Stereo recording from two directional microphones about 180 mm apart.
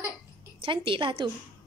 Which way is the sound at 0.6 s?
30° right (ahead or behind).